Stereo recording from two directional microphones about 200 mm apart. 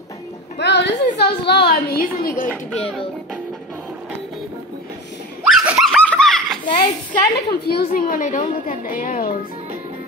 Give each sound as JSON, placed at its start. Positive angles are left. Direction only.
{"t": 0.6, "sound": "a woman's voice", "side_deg": 60}
{"t": 2.7, "sound": "speech", "side_deg": 5}
{"t": 5.4, "sound": "a sound", "side_deg": 0}
{"t": 6.8, "sound": "a woman's voice", "side_deg": 20}
{"t": 7.6, "sound": "a woman's voice", "side_deg": 50}